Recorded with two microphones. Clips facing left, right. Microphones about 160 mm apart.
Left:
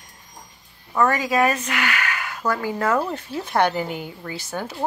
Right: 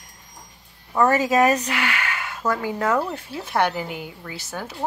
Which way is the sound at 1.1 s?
40° right (ahead or behind).